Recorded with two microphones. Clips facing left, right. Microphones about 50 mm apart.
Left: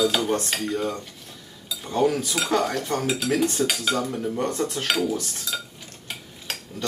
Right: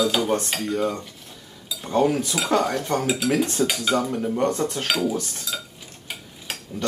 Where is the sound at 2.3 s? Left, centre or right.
Centre.